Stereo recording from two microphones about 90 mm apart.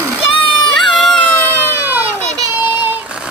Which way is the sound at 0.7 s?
Centre (ahead or behind).